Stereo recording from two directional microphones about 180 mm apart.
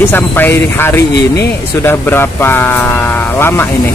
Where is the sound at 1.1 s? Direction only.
65° left (ahead or behind).